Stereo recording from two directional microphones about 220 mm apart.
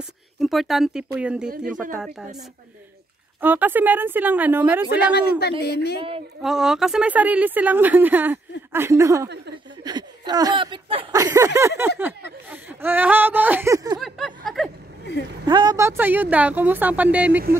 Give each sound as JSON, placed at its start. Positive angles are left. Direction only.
{"t": 0.4, "sound": "a sound", "side_deg": 0}
{"t": 3.3, "sound": "speech", "side_deg": -10}
{"t": 5.6, "sound": "a woman's voice", "side_deg": 45}
{"t": 5.9, "sound": "speech", "side_deg": -25}
{"t": 6.4, "sound": "speech", "side_deg": 0}
{"t": 13.9, "sound": "a sound", "side_deg": 0}
{"t": 15.4, "sound": "speech", "side_deg": -20}